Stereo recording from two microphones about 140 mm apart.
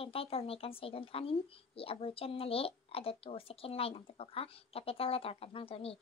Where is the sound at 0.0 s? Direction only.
45° left (ahead or behind).